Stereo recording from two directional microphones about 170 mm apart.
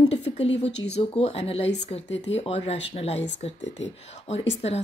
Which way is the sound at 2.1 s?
90° left.